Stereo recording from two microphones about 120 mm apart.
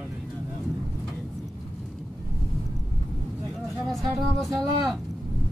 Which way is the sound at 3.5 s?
Centre (ahead or behind).